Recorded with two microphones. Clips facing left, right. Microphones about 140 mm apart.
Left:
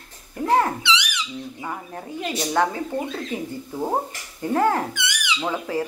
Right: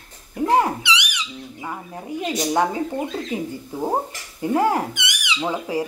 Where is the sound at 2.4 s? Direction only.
15° right (ahead or behind).